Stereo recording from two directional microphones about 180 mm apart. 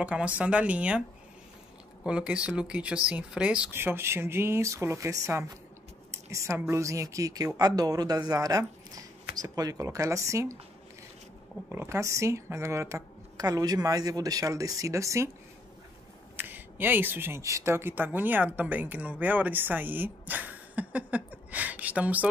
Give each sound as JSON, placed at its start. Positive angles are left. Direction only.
{"t": 0.0, "sound": "speech", "side_deg": -5}
{"t": 2.0, "sound": "a woman's voice", "side_deg": -5}
{"t": 11.7, "sound": "speech", "side_deg": -15}
{"t": 16.3, "sound": "speech", "side_deg": -10}